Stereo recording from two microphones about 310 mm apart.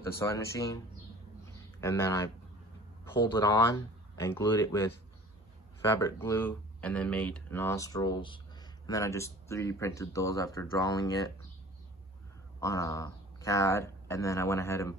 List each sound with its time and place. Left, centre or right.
0.2 s speech: centre
1.8 s speech: centre
12.5 s speech: centre